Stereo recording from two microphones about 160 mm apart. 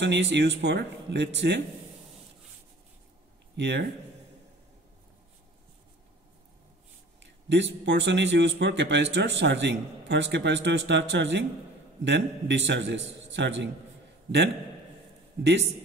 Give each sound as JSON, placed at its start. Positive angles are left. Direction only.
{"t": 0.0, "sound": "a man's voice", "side_deg": -90}
{"t": 3.5, "sound": "speech", "side_deg": -90}
{"t": 7.2, "sound": "a man's voice", "side_deg": -90}
{"t": 15.4, "sound": "a man's voice", "side_deg": -90}